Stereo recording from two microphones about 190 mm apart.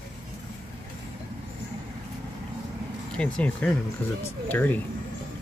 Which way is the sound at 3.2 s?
5° left (ahead or behind).